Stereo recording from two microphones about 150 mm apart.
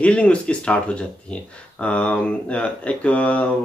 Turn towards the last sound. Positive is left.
turn(degrees=10)  # may be behind; listen again after turning